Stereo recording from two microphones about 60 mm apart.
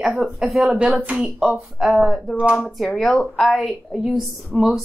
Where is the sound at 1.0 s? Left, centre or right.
Right.